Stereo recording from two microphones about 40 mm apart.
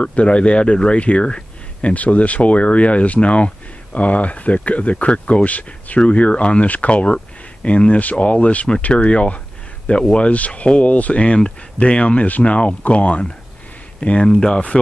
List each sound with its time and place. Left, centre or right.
0.0 s speech: left